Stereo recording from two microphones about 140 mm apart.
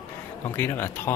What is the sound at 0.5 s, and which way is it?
Speech, 15° left (ahead or behind).